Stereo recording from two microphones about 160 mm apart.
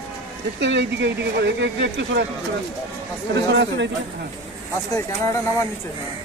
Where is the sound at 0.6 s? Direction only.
90° right.